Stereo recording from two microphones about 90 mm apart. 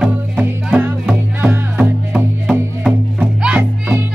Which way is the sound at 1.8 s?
10° right (ahead or behind).